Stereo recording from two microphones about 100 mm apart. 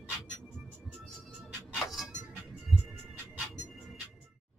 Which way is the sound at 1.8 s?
5° right (ahead or behind).